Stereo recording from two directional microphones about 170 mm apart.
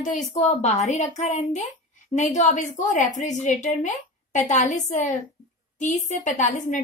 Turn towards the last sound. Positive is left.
turn(degrees=50)  # may be behind; listen again after turning